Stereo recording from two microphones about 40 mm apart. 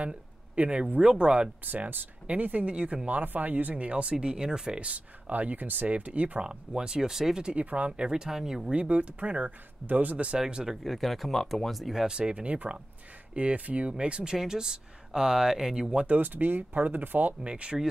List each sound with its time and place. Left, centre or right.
0.0 s a sound: right
1.0 s speech: right
1.6 s speech: right
2.2 s speech: right
3.1 s speech: right; by 4.7 s centre
4.7 s speech: right
6.4 s speech: right
7.4 s speech: right; by 8.7 s centre
8.7 s speech: right
10.4 s speech: centre
10.8 s speech: centre
12.1 s speech: right
16.1 s speech: right
17.4 s speech: right